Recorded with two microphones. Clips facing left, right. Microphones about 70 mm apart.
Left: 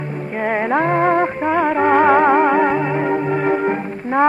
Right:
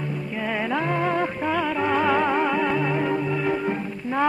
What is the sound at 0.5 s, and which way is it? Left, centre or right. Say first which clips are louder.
Music: left 8 dB; left.